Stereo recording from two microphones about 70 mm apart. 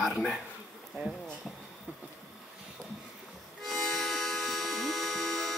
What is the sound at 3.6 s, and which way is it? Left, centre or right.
Music, centre.